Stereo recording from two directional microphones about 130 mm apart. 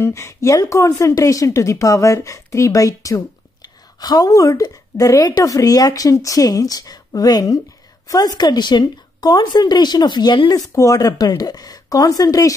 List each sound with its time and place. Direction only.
0.0 s a woman's voice: 20° left (ahead or behind)
10.7 s a woman's voice: 25° left (ahead or behind)